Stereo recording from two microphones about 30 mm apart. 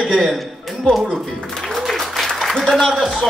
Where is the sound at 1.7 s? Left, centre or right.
Centre.